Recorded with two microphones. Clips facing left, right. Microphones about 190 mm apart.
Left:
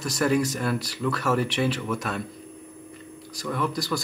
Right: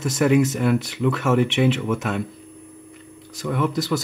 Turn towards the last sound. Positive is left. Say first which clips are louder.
# right 5 dB
turn(degrees=-20)  # may be behind; listen again after turning